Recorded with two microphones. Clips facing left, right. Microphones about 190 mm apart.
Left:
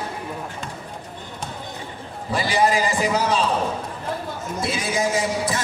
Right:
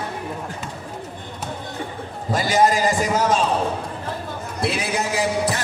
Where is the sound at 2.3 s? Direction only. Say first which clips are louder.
Right 2 dB; 45° right (ahead or behind).